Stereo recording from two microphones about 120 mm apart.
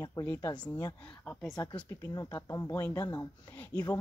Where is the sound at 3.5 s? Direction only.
15° left (ahead or behind).